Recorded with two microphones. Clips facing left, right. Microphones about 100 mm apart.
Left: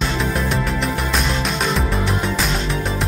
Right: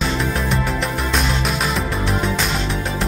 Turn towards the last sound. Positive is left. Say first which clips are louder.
# even
turn(degrees=0)  # may be behind; listen again after turning